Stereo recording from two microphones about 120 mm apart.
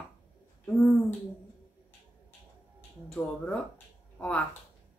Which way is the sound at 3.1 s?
10° left (ahead or behind).